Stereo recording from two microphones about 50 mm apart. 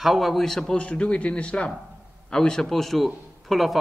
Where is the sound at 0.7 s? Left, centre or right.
Left.